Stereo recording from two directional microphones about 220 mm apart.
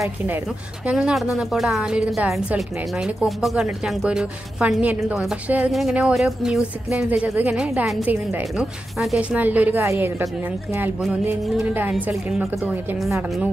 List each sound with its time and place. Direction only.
0.8 s a woman's voice: 5° right (ahead or behind)